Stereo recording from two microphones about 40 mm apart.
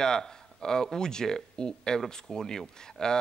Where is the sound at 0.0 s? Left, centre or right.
Centre.